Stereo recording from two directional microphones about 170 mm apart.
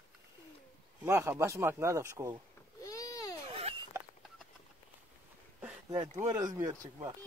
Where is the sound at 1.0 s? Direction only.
15° right (ahead or behind).